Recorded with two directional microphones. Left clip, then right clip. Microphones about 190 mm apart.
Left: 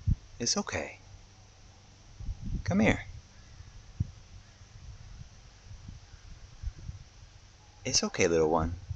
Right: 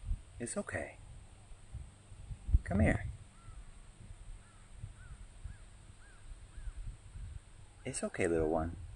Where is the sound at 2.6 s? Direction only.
40° left (ahead or behind).